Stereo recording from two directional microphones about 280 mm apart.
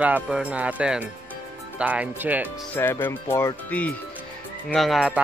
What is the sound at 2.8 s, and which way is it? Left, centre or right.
Speech, centre.